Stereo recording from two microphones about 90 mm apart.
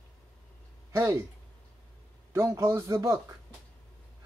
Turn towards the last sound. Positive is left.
turn(degrees=-40)  # may be behind; listen again after turning